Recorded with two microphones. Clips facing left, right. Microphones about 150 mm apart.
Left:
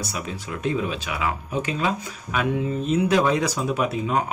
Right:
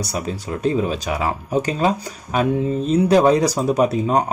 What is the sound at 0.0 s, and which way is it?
Speech, 35° right (ahead or behind).